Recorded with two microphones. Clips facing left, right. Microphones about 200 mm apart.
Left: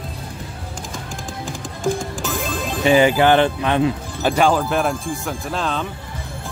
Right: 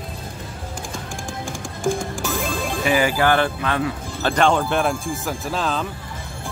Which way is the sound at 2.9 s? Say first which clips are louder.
Left 5 dB; 25° left (ahead or behind).